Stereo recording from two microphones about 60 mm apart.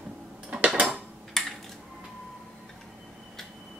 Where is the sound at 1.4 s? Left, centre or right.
Centre.